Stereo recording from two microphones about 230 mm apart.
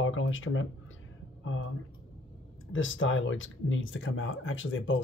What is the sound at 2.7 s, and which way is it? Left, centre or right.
Speech, left.